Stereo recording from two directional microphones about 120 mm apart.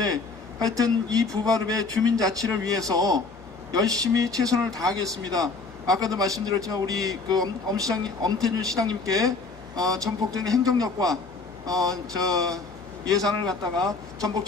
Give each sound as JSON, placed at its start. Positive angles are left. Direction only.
{"t": 0.0, "sound": "a man's voice", "side_deg": -30}